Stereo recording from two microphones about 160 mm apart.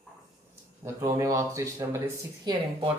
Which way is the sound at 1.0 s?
20° right (ahead or behind).